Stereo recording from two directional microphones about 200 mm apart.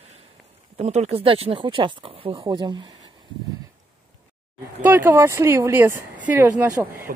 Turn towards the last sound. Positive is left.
turn(degrees=-15)  # may be behind; listen again after turning